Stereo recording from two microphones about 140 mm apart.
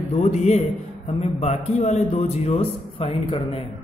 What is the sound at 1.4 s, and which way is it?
A man's voice, 50° left (ahead or behind).